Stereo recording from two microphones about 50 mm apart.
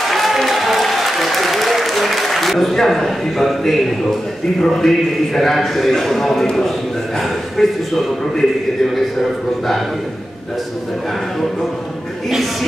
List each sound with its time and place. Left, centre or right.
0.1 s applause: centre
2.7 s a man's voice: centre